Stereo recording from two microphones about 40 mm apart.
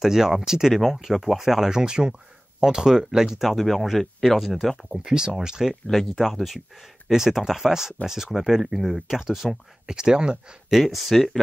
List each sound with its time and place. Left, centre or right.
0.0 s speech: centre
4.9 s speech: centre
5.9 s speech: centre
7.1 s speech: centre
11.1 s speech: centre